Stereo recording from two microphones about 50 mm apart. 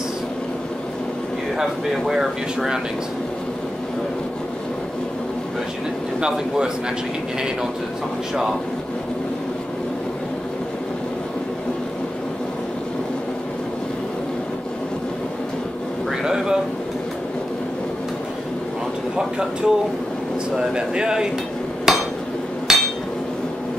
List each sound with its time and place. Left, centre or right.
1.6 s speech: centre
6.2 s speech: centre
16.1 s a sound: centre
19.1 s a sound: centre
20.5 s speech: centre
21.9 s hammer: centre